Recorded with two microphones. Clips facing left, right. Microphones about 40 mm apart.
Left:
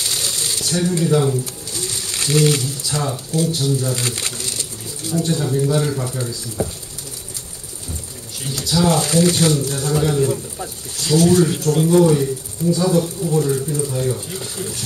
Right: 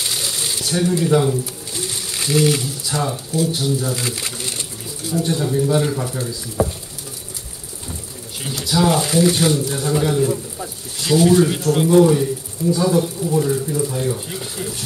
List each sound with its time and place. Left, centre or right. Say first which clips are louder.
0.0 s shuffling cards: even; centre
0.4 s speech: right 1 dB; centre
1.7 s a sound: even; centre
2.0 s speech: even; centre
8.5 s speech: even; centre
11.0 s speech: right 1 dB; centre
12.0 s speech: right 1 dB; centre